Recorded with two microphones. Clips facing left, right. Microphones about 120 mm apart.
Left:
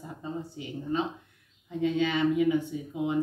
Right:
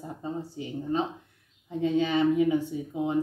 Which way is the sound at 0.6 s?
35° right (ahead or behind).